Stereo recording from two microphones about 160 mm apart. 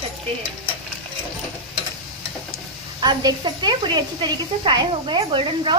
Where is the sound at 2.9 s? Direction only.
25° right (ahead or behind).